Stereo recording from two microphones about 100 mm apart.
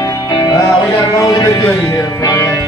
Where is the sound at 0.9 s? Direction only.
40° left (ahead or behind).